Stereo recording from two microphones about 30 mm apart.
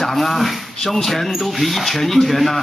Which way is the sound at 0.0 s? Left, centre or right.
Centre.